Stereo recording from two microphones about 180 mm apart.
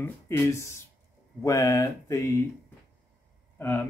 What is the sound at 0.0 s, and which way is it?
Speech, 15° left (ahead or behind).